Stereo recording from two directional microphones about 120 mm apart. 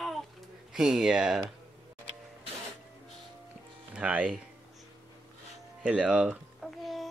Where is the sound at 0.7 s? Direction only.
5° right (ahead or behind).